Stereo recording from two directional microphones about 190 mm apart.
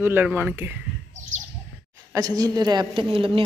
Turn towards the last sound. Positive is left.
turn(degrees=-30)  # may be behind; listen again after turning